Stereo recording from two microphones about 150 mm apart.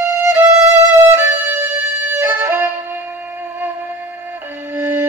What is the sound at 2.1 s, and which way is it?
Music, 15° right (ahead or behind).